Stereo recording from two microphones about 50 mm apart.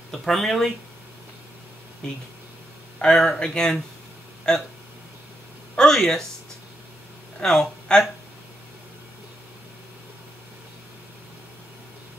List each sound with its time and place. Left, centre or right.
0.1 s speech: centre
3.0 s speech: centre
5.8 s a sound: centre
7.3 s speech: centre